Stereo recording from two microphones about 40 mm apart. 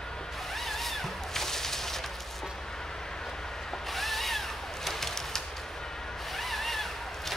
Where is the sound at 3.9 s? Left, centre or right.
Centre.